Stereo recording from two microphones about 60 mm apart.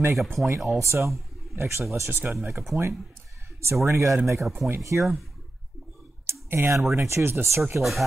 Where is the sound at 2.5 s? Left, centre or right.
Centre.